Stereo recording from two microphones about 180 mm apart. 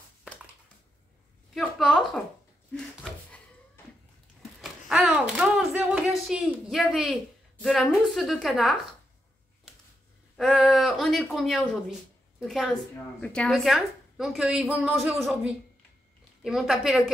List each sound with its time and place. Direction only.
1.5 s a sound: centre (ahead or behind)
7.6 s a woman's voice: centre (ahead or behind)
10.3 s a woman's voice: centre (ahead or behind)